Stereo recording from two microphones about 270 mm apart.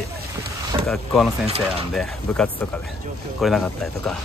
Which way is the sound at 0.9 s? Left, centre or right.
Centre.